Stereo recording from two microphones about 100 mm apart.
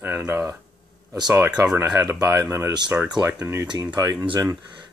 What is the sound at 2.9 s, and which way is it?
Speech, 15° right (ahead or behind).